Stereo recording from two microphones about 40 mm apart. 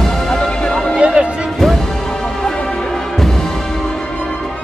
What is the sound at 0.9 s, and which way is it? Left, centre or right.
Music, right.